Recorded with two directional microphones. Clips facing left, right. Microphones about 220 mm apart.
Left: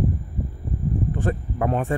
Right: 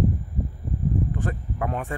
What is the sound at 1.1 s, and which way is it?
Speech, 30° left (ahead or behind).